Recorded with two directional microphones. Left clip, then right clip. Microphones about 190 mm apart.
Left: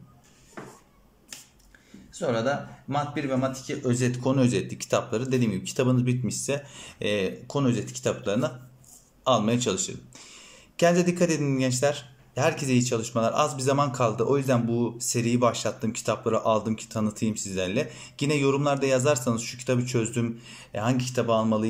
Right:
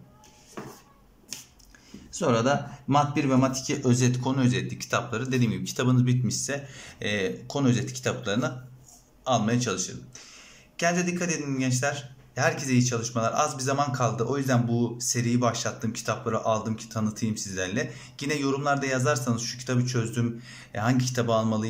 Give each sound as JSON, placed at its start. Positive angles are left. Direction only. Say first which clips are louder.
{"t": 2.1, "sound": "speech", "louder": "right 2 dB", "side_deg": -10}